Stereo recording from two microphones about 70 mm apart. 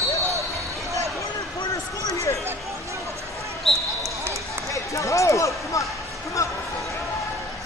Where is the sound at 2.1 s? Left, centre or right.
Left.